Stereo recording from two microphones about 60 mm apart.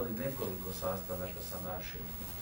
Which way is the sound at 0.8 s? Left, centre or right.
Centre.